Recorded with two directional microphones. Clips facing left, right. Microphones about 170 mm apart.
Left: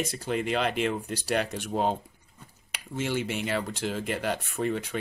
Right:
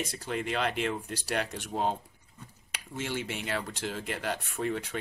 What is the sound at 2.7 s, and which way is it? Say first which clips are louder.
Speech: left 5 dB; 15° left (ahead or behind).